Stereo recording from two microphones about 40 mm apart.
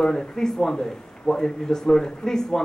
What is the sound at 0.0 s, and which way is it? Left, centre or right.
A man's voice, centre.